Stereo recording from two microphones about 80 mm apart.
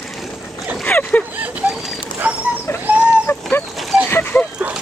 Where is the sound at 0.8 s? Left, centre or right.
Left.